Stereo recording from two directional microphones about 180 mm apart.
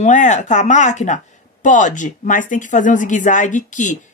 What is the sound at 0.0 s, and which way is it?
Speech, 45° left (ahead or behind).